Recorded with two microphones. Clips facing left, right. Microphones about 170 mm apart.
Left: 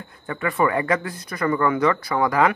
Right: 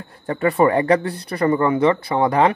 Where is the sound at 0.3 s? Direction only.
35° right (ahead or behind).